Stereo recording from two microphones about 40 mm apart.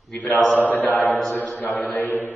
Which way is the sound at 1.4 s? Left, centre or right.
Left.